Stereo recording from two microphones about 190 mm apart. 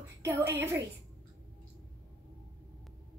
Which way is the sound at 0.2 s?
15° right (ahead or behind).